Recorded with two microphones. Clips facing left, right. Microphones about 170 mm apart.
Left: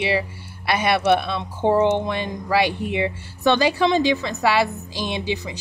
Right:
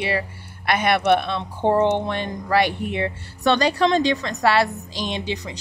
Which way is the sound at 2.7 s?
20° left (ahead or behind).